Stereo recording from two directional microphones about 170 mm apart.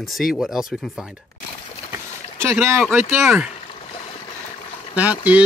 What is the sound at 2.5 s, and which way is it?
Speech, 15° right (ahead or behind).